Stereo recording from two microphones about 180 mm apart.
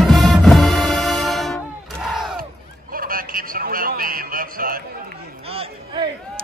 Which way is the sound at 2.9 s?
50° right (ahead or behind).